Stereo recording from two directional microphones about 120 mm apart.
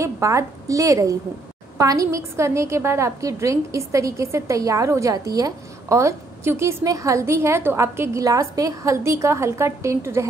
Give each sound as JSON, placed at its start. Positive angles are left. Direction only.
{"t": 0.0, "sound": "a woman's voice", "side_deg": -25}